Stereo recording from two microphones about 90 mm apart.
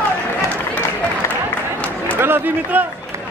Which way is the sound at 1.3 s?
15° left (ahead or behind).